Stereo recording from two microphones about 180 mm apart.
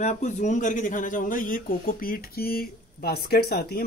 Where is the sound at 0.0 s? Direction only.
40° left (ahead or behind).